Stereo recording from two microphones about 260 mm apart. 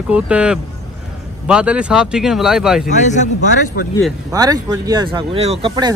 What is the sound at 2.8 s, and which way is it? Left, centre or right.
Speech, left.